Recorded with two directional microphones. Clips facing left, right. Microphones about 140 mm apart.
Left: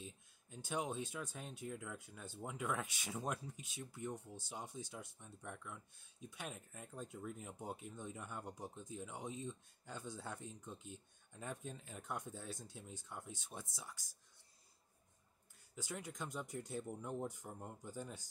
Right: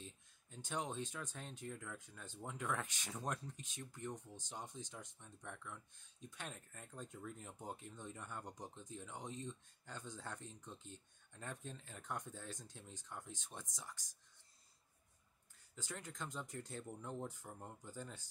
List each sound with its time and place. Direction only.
0.0 s speech: 10° left (ahead or behind)
15.7 s speech: 10° left (ahead or behind)